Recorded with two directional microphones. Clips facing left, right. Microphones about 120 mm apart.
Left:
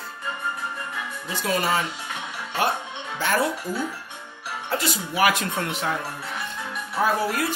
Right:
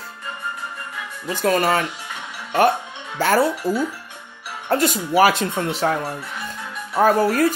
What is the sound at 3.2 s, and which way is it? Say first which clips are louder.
Speech: right 6 dB; 40° right (ahead or behind).